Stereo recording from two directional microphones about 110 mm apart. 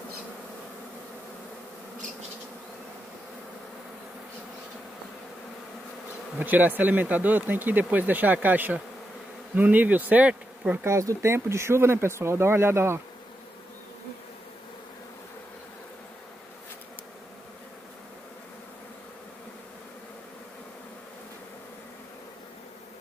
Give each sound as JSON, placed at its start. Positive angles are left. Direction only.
{"t": 6.4, "sound": "speech", "side_deg": -15}
{"t": 10.9, "sound": "speech", "side_deg": -25}